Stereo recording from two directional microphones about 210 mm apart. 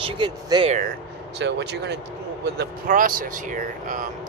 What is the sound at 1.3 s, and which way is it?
Speech, 55° right (ahead or behind).